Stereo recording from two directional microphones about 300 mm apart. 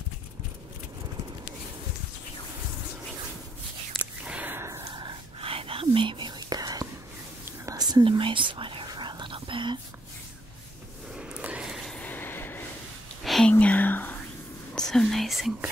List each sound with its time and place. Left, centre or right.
3.9 s whispering: centre
11.1 s a sound: centre
13.2 s whispering: centre